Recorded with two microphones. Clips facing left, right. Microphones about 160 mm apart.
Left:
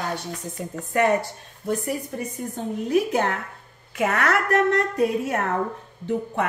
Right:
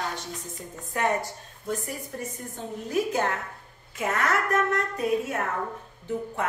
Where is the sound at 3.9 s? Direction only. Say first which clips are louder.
Left 4 dB; 70° left (ahead or behind).